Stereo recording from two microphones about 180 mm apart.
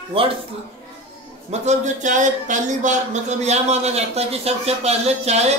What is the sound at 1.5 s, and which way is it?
Speech, 40° right (ahead or behind).